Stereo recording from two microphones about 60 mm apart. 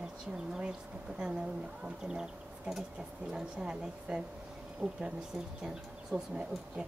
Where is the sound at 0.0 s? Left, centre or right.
Centre.